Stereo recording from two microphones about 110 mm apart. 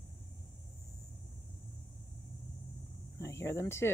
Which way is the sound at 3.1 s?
25° left (ahead or behind).